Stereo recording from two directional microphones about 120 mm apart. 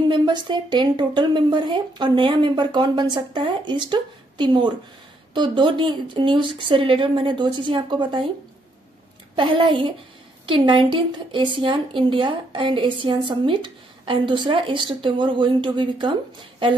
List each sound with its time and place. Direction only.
0.1 s a woman's voice: 40° right (ahead or behind)
9.3 s a woman's voice: 40° right (ahead or behind)